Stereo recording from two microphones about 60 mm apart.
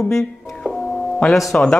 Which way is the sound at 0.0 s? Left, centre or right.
Centre.